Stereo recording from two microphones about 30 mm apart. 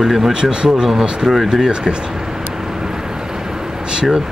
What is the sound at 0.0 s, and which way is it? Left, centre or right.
Speech, centre.